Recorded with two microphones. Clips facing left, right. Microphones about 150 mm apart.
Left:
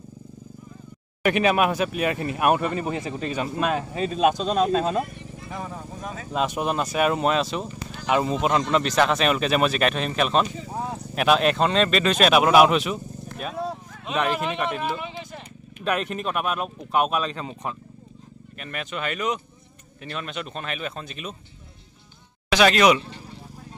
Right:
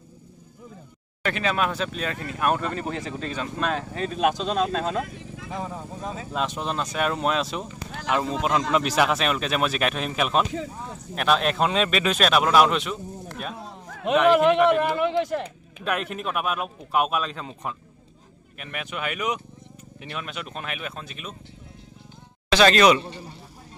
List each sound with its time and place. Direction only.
1.2 s speech: 15° left (ahead or behind)
5.0 s vehicle: 90° right
5.5 s speech: 15° right (ahead or behind)
6.3 s speech: 10° left (ahead or behind)
13.8 s speech: 65° right (ahead or behind)
15.8 s speech: centre (ahead or behind)
22.5 s speech: 15° left (ahead or behind)